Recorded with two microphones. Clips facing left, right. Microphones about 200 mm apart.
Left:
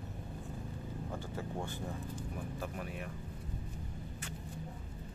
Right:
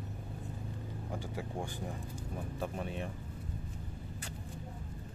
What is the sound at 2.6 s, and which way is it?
Speech, 25° right (ahead or behind).